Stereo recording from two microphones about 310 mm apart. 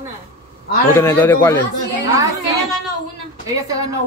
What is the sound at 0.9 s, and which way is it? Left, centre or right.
Cattle, centre.